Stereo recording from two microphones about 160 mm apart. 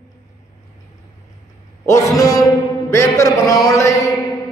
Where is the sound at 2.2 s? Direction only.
20° left (ahead or behind).